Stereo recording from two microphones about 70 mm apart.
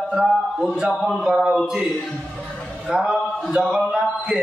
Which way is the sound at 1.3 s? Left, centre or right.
Centre.